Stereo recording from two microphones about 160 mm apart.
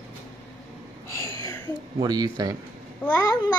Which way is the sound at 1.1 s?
20° left (ahead or behind).